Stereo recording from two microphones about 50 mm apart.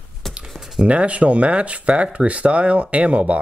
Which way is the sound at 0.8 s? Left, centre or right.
Right.